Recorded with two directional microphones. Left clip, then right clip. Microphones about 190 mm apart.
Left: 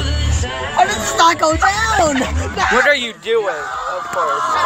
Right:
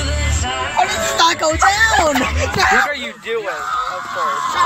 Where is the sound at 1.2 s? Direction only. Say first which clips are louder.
Left 3 dB; 45° left (ahead or behind).